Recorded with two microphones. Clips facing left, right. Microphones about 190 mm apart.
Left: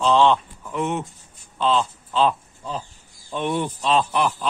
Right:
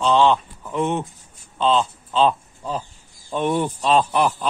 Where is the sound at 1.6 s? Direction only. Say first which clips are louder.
Right 2 dB; 25° right (ahead or behind).